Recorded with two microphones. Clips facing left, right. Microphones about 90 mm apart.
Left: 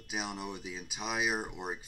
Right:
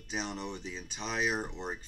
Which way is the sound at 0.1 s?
10° left (ahead or behind).